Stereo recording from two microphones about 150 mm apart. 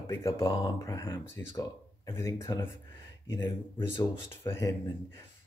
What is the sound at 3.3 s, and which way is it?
Speech, 20° left (ahead or behind).